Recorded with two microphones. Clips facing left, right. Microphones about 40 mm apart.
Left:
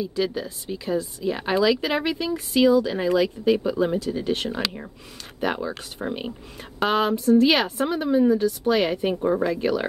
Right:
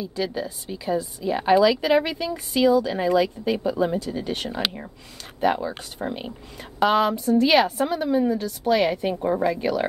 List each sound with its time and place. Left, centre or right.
0.0 s speech: centre